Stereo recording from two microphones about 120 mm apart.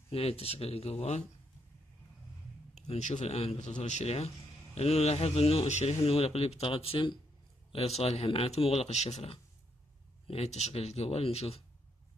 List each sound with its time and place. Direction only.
0.1 s speech: 55° left (ahead or behind)
2.7 s speech: 75° left (ahead or behind)
6.0 s speech: 55° left (ahead or behind)
7.7 s speech: 60° left (ahead or behind)